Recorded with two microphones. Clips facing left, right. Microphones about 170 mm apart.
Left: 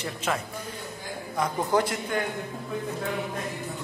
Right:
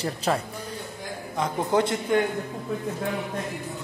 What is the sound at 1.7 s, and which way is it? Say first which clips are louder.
Speech: right 2 dB; 25° right (ahead or behind).